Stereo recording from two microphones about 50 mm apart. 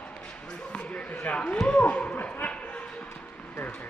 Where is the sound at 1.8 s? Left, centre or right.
Left.